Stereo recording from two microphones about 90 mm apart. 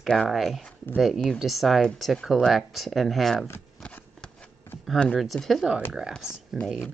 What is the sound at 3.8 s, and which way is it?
Shuffling cards, 10° left (ahead or behind).